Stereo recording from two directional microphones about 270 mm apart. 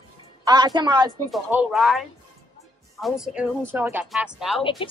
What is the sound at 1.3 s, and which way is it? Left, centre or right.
Speech, centre.